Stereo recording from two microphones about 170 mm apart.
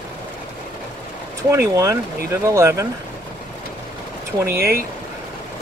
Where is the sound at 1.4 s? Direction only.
15° right (ahead or behind).